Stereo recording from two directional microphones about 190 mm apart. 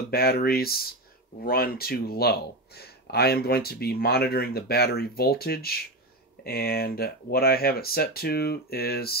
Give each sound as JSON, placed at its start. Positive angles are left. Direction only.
{"t": 0.1, "sound": "speech", "side_deg": 55}